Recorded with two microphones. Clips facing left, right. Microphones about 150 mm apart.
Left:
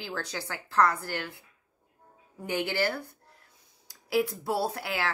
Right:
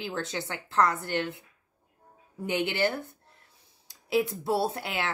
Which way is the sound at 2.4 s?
20° right (ahead or behind).